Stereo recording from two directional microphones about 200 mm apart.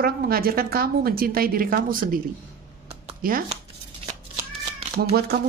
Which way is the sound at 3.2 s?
45° right (ahead or behind).